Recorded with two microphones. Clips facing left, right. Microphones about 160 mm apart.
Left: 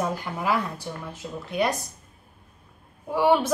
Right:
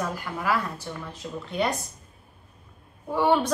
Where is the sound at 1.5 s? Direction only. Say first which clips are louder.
Left 2 dB; centre (ahead or behind).